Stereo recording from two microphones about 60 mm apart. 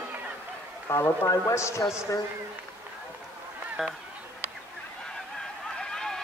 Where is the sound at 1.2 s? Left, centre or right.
Left.